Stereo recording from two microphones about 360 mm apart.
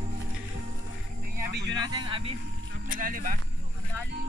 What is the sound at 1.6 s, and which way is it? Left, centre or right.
Speech, centre.